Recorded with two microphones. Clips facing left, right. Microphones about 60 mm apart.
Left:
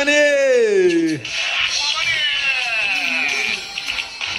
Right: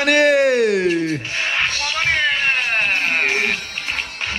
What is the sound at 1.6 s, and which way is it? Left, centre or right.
Music, right.